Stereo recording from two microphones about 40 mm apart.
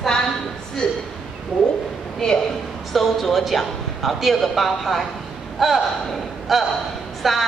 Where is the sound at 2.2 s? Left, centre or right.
Centre.